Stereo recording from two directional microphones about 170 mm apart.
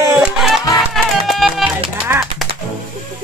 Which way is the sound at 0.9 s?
Centre (ahead or behind).